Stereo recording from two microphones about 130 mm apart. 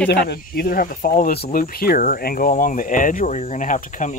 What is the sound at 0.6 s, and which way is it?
Speech, 90° left.